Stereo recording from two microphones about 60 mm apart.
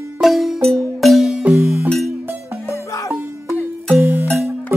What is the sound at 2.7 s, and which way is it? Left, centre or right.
Music, left.